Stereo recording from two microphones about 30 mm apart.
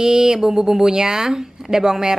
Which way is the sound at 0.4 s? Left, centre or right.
Centre.